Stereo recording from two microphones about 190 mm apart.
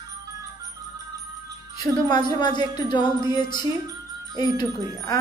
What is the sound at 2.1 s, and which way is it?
Speech, 25° left (ahead or behind).